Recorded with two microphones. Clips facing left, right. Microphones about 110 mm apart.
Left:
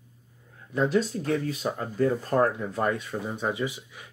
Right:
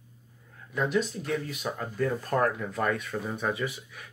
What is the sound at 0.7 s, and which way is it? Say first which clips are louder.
Speech: left 3 dB; 35° left (ahead or behind).